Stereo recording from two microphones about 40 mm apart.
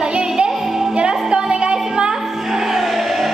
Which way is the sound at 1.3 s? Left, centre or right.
Right.